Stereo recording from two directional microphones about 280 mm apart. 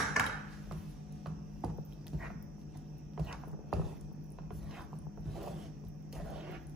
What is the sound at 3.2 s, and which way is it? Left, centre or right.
Music, centre.